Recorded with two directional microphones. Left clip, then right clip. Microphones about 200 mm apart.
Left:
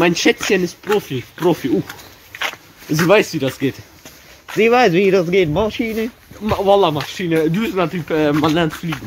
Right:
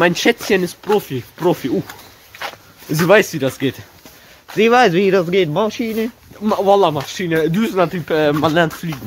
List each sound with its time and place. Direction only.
0.0 s speech: 35° right (ahead or behind)
0.8 s speech: 25° right (ahead or behind)
2.9 s speech: 40° right (ahead or behind)
4.6 s speech: 15° right (ahead or behind)
6.4 s speech: 45° right (ahead or behind)